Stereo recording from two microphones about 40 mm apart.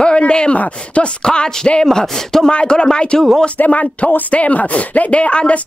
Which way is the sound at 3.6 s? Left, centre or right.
Left.